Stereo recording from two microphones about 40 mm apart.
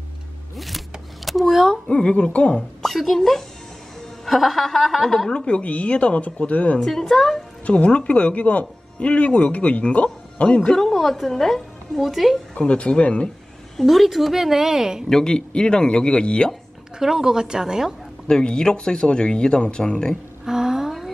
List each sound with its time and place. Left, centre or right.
0.6 s a sound: centre
1.9 s speech: left
2.8 s a woman's voice: centre
5.3 s speech: left
6.8 s a woman's voice: centre
7.6 s speech: left
10.9 s a woman's voice: centre
12.5 s speech: left
13.8 s speech: centre
15.0 s speech: centre
17.0 s speech: centre
18.2 s speech: left
20.4 s a sound: centre